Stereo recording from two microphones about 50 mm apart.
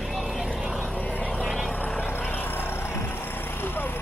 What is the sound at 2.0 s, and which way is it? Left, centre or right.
Vehicle, left.